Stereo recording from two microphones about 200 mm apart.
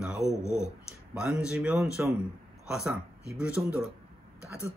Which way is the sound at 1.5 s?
Centre (ahead or behind).